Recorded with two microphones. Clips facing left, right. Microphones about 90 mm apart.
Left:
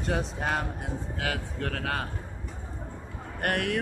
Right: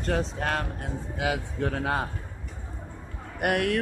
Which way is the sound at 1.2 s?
15° right (ahead or behind).